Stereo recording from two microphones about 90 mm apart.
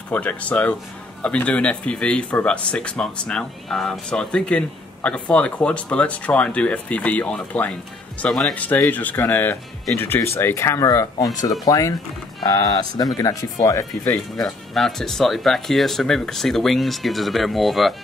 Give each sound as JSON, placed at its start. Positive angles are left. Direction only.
{"t": 0.1, "sound": "speech", "side_deg": 15}
{"t": 8.5, "sound": "speech", "side_deg": 20}
{"t": 14.3, "sound": "speech", "side_deg": 5}